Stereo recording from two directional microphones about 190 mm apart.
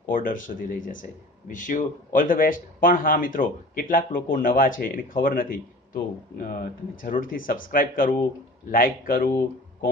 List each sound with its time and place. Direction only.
0.1 s speech: 45° left (ahead or behind)